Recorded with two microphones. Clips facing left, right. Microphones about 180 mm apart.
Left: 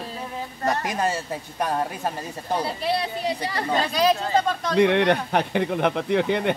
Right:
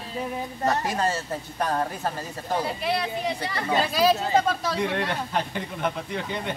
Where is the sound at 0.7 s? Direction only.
15° left (ahead or behind).